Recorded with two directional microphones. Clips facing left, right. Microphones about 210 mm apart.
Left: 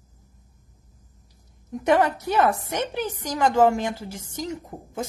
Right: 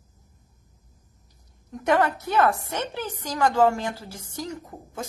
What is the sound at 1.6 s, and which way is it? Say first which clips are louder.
A woman's voice: left 2 dB; 20° left (ahead or behind).